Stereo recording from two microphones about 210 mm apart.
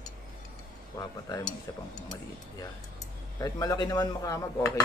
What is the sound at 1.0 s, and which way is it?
Speech, 15° left (ahead or behind).